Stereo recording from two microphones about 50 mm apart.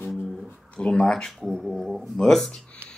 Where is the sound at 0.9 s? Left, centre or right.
Centre.